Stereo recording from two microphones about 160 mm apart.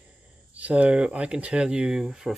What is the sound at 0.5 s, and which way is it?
Speech, 10° right (ahead or behind).